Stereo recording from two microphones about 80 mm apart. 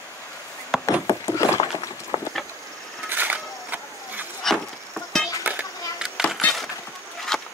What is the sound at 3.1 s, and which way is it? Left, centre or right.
Vehicle, right.